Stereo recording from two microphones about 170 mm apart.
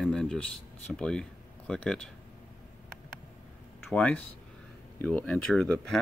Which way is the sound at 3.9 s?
10° left (ahead or behind).